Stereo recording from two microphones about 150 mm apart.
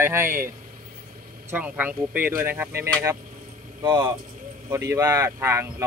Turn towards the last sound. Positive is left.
turn(degrees=-15)  # may be behind; listen again after turning